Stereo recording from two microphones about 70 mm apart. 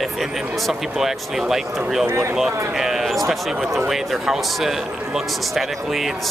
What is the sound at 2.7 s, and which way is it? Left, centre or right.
Speech, centre.